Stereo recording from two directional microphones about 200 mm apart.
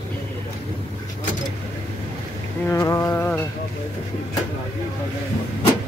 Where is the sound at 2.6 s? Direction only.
15° left (ahead or behind).